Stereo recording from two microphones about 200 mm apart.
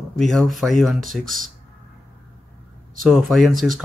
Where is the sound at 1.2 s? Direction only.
40° right (ahead or behind).